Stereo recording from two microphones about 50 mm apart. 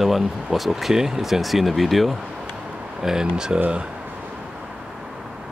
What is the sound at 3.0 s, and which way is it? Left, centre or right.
Speech, centre.